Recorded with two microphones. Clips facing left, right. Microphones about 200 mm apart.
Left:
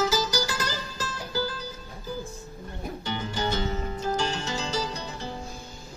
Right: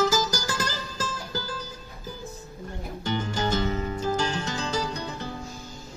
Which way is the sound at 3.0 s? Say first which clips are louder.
Right 3 dB; 45° right (ahead or behind).